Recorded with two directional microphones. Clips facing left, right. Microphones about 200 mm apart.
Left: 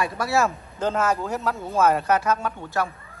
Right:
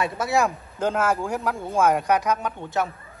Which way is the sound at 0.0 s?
20° right (ahead or behind).